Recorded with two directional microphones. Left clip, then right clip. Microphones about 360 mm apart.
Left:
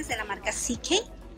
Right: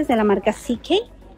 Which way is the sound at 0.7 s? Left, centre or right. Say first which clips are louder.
Right 3 dB; centre.